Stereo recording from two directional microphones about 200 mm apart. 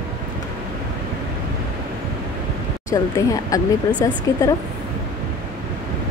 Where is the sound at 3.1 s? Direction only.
15° left (ahead or behind).